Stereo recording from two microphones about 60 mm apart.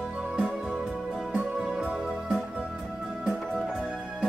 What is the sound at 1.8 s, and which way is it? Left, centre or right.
Music, centre.